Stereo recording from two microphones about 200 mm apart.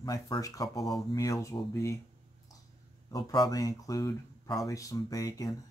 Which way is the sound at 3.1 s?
20° left (ahead or behind).